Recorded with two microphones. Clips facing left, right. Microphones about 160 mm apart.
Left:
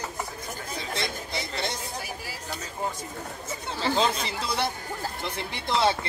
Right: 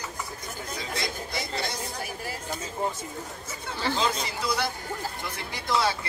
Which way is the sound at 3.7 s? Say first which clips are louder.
Left 2 dB; 25° left (ahead or behind).